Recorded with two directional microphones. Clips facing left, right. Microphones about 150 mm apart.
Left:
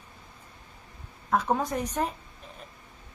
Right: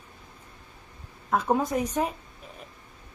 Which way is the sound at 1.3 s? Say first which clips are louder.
Right 2 dB; 10° right (ahead or behind).